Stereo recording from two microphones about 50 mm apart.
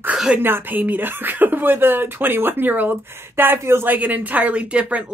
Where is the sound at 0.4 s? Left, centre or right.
Right.